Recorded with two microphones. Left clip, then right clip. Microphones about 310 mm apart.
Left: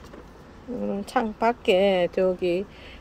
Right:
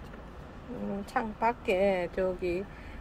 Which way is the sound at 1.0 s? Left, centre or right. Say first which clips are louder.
Left 6 dB; left.